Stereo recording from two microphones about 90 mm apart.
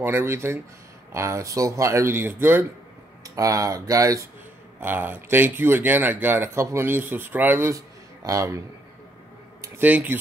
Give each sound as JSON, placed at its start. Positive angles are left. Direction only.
{"t": 0.0, "sound": "speech", "side_deg": -25}
{"t": 3.3, "sound": "speech", "side_deg": -35}
{"t": 4.7, "sound": "speech", "side_deg": -20}
{"t": 7.7, "sound": "a sound", "side_deg": -40}
{"t": 9.8, "sound": "speech", "side_deg": -20}